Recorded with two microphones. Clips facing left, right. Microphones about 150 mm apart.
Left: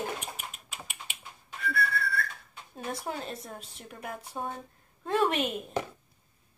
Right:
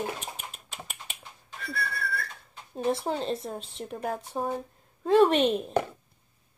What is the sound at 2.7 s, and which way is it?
A woman's voice, 25° right (ahead or behind).